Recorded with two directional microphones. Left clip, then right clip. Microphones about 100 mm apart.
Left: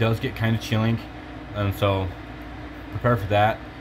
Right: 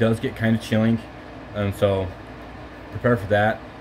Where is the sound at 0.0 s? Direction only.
5° right (ahead or behind).